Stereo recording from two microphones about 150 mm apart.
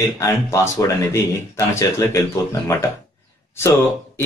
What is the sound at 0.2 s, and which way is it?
Speech, 20° left (ahead or behind).